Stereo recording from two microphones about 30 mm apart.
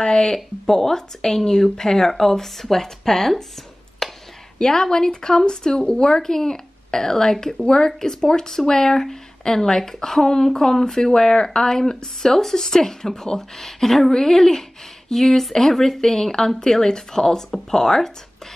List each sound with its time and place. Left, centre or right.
0.0 s speech: left
4.0 s a sound: centre
4.6 s speech: left
12.3 s speech: centre